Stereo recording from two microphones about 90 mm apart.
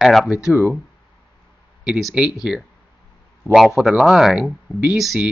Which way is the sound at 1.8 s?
5° right (ahead or behind).